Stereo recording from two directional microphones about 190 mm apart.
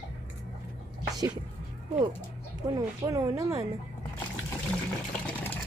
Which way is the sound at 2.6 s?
20° right (ahead or behind).